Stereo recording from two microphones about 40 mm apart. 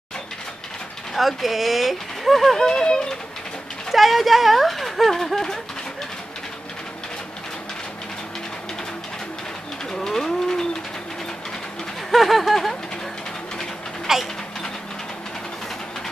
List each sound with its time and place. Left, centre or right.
1.1 s speech: centre
2.5 s speech: centre
3.9 s speech: centre
9.9 s speech: centre
12.1 s speech: centre
14.1 s speech: centre